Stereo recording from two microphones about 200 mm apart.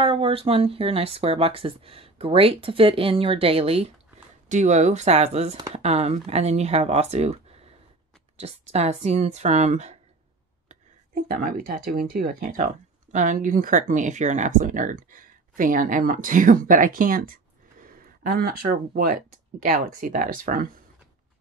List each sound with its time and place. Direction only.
0.0 s speech: 25° right (ahead or behind)
11.1 s speech: 45° right (ahead or behind)